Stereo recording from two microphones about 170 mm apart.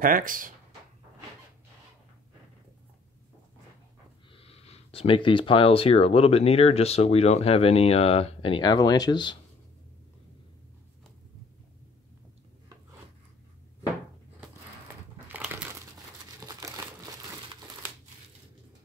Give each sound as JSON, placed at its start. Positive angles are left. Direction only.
{"t": 0.0, "sound": "speech", "side_deg": -55}
{"t": 4.3, "sound": "speech", "side_deg": 35}
{"t": 15.2, "sound": "crumpling", "side_deg": -10}